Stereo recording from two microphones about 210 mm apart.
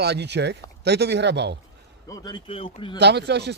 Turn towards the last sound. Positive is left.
turn(degrees=-55)  # may be behind; listen again after turning